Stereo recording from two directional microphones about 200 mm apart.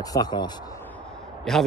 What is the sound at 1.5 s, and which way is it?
Speech, centre (ahead or behind).